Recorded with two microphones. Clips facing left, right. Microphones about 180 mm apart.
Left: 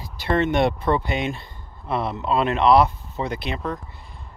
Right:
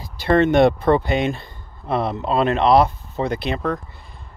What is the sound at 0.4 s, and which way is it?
Speech, 40° right (ahead or behind).